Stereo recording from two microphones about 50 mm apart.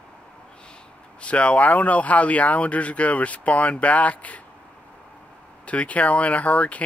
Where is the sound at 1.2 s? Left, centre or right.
Left.